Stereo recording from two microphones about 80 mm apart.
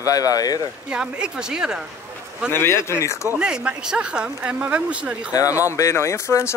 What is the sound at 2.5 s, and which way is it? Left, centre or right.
Speech, left.